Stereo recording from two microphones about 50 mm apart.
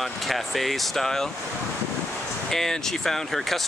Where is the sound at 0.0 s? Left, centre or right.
Centre.